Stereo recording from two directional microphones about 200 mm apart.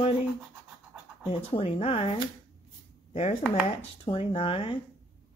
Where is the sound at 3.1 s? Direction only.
35° left (ahead or behind).